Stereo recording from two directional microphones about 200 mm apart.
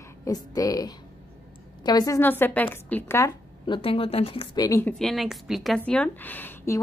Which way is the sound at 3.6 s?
25° left (ahead or behind).